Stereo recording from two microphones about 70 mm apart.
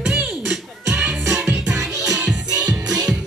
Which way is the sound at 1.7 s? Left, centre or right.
Centre.